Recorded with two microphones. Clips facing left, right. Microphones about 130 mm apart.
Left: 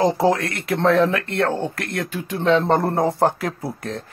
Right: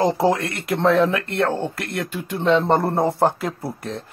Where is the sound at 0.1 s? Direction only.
Centre (ahead or behind).